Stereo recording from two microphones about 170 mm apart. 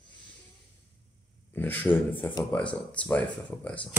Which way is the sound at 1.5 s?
10° left (ahead or behind).